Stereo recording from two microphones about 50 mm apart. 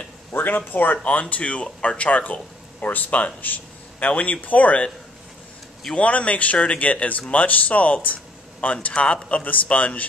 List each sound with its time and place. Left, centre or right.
0.3 s a sound: left
0.6 s speech: left
1.3 s speech: left
5.9 s speech: left